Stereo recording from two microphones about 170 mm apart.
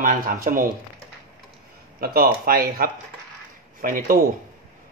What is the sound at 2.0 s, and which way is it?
Speech, 60° right (ahead or behind).